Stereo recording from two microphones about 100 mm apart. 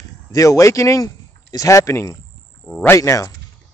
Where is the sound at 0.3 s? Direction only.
35° left (ahead or behind).